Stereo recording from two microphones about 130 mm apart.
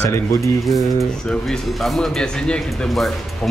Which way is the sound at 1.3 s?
Centre (ahead or behind).